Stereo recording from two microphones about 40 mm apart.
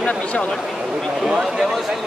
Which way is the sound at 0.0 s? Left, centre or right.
Left.